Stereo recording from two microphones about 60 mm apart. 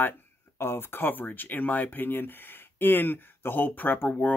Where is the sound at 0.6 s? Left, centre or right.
Left.